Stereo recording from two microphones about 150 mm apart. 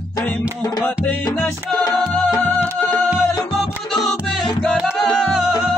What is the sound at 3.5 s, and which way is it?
Music, centre (ahead or behind).